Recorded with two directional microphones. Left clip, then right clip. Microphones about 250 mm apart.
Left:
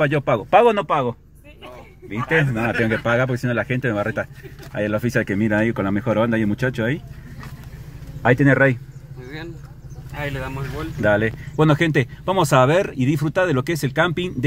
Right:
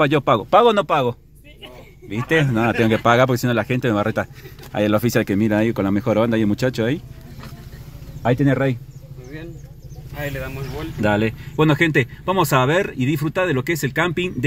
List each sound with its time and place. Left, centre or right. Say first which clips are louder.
0.0 s speech: right 3 dB; right
2.2 s speech: right 1 dB; right
8.2 s speech: left 4 dB; centre
10.1 s speech: even; left
11.0 s speech: left 1 dB; centre
11.5 s speech: right 1 dB; centre